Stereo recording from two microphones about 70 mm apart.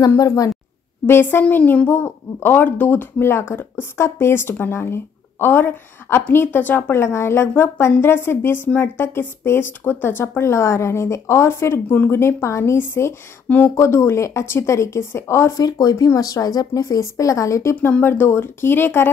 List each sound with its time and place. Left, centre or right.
0.2 s speech: left
1.0 s speech: left
15.5 s speech: left
17.7 s speech: centre
18.0 s speech: left